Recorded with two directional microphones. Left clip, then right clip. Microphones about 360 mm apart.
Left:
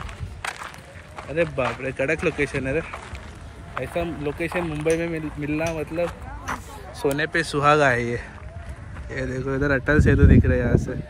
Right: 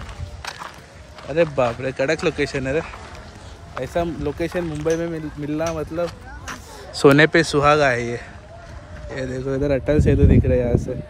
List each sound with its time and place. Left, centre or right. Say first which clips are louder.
1.3 s speech: right 5 dB; centre
6.4 s a sound: left 3 dB; right
7.2 s speech: right 4 dB; centre